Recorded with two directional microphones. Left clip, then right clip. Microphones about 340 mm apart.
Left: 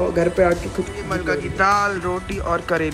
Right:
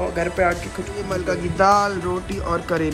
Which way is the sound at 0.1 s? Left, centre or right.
Centre.